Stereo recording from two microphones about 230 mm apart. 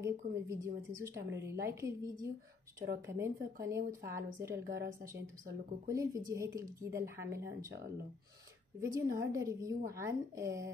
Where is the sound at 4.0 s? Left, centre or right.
Right.